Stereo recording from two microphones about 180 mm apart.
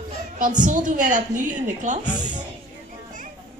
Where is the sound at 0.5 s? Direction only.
45° right (ahead or behind).